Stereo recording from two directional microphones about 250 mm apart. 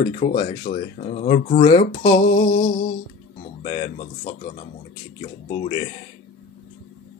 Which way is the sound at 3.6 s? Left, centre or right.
Left.